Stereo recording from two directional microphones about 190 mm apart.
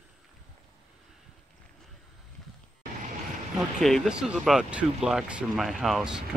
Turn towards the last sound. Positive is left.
turn(degrees=0)  # may be behind; listen again after turning